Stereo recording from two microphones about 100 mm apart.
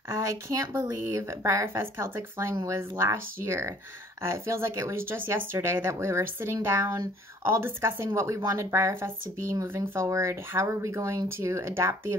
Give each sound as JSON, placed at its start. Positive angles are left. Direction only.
{"t": 0.7, "sound": "speech", "side_deg": -30}